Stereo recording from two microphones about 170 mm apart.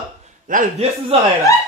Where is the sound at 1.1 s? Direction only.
35° right (ahead or behind).